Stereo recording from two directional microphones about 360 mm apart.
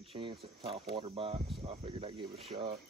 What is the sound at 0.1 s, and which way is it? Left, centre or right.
Speech, centre.